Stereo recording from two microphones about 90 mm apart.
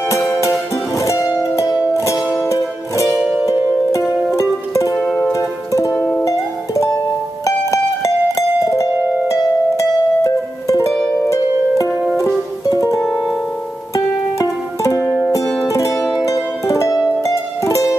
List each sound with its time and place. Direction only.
0.5 s music: 35° left (ahead or behind)
4.3 s music: 35° left (ahead or behind)
4.9 s music: 5° left (ahead or behind)
5.3 s music: 35° left (ahead or behind)
5.9 s music: 10° left (ahead or behind)
6.2 s music: 35° left (ahead or behind)
11.2 s harp: 35° left (ahead or behind)
11.9 s music: 10° right (ahead or behind)
12.6 s music: 35° left (ahead or behind)
13.0 s music: 5° left (ahead or behind)
13.9 s music: 35° left (ahead or behind)